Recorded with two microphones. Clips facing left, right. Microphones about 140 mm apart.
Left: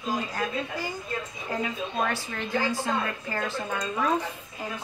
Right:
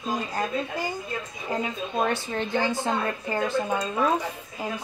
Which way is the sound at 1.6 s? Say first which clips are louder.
Right 3 dB; 25° right (ahead or behind).